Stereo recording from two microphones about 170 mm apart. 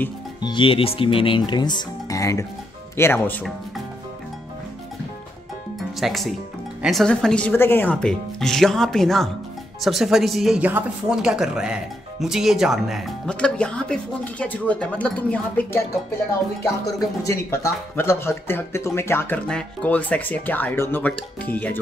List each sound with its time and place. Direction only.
0.4 s speech: 30° left (ahead or behind); by 3.4 s 10° left (ahead or behind)
5.8 s music: centre (ahead or behind)
6.8 s speech: centre (ahead or behind)
17.3 s speech: 15° left (ahead or behind)